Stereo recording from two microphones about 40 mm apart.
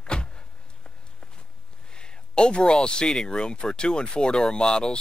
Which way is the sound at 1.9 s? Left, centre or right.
Left.